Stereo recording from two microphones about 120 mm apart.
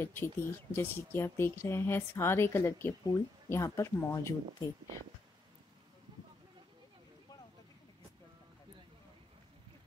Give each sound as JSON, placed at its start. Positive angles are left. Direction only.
{"t": 0.0, "sound": "speech", "side_deg": 20}